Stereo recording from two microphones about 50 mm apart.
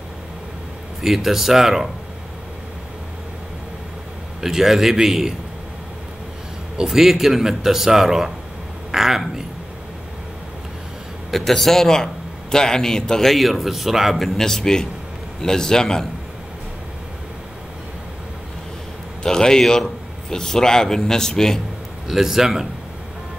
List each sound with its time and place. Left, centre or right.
1.0 s a man's voice: centre
4.4 s a man's voice: centre
6.8 s a man's voice: centre
11.2 s a man's voice: centre
13.3 s a man's voice: centre
14.2 s a man's voice: centre
19.2 s a man's voice: centre
22.0 s a man's voice: centre